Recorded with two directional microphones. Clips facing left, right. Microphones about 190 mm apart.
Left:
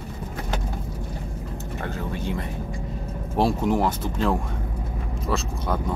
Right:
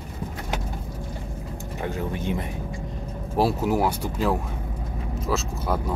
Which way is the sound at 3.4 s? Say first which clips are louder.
Even; 5° right (ahead or behind).